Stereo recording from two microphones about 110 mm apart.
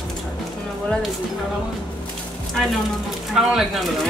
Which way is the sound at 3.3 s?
5° right (ahead or behind).